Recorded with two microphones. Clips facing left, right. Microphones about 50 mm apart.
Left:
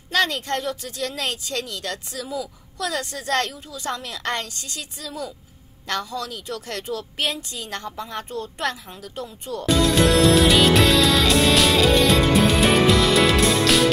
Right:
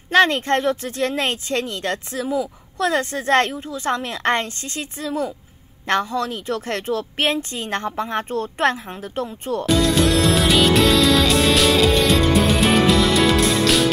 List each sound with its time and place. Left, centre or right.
0.1 s speech: right
9.7 s music: centre